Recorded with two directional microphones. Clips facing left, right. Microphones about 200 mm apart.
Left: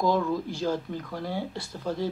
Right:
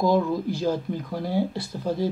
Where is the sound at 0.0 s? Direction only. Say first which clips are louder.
Right 3 dB; 10° right (ahead or behind).